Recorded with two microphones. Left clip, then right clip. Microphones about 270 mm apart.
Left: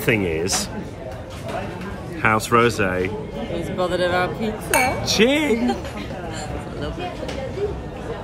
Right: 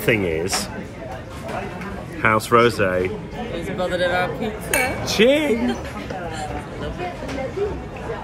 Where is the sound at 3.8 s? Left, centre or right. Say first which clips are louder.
Even; centre.